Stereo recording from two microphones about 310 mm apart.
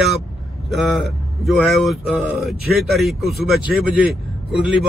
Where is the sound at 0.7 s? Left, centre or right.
Centre.